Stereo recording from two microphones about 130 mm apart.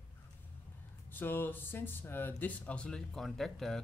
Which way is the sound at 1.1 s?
15° left (ahead or behind).